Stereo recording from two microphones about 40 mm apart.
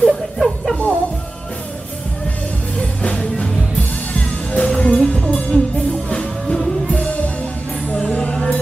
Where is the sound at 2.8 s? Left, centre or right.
Left.